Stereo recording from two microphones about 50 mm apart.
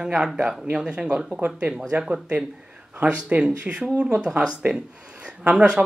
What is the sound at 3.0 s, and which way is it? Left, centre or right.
Speech, right.